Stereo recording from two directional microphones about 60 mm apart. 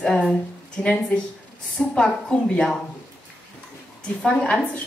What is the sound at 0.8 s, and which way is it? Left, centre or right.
A woman's voice, centre.